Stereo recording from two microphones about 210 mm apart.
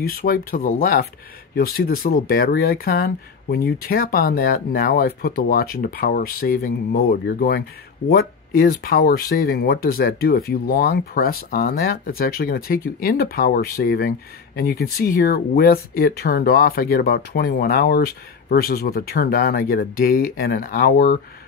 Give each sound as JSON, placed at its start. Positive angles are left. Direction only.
{"t": 0.1, "sound": "speech", "side_deg": 45}